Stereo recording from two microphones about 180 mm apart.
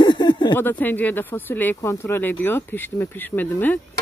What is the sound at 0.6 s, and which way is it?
Speech, 10° left (ahead or behind).